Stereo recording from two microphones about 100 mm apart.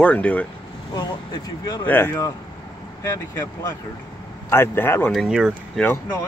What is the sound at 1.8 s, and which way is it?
Speech, 20° left (ahead or behind).